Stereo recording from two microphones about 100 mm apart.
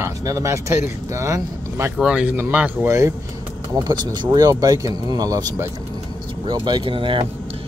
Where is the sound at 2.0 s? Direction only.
10° right (ahead or behind).